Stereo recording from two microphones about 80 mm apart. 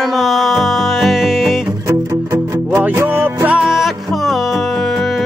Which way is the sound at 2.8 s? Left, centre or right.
Right.